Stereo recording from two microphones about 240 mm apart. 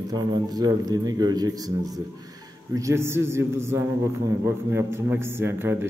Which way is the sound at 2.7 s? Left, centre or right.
Centre.